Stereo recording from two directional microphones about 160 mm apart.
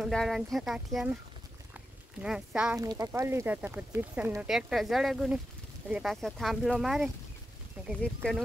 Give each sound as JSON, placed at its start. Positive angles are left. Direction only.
{"t": 0.0, "sound": "speech", "side_deg": 0}
{"t": 2.2, "sound": "speech", "side_deg": -5}
{"t": 2.7, "sound": "speech", "side_deg": -20}